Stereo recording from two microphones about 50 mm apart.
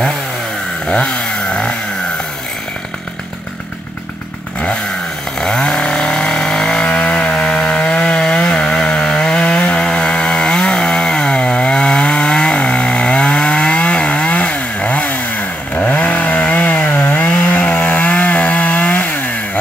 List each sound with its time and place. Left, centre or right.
5.4 s chainsaw: centre
6.9 s wood: centre
15.7 s chainsaw: left